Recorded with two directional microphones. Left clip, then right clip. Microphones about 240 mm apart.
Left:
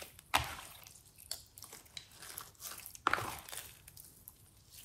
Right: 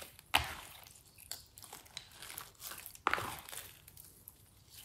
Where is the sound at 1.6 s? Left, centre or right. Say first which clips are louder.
Right 1 dB; centre.